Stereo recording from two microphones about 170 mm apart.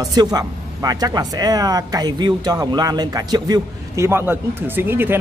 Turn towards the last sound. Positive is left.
turn(degrees=-10)  # may be behind; listen again after turning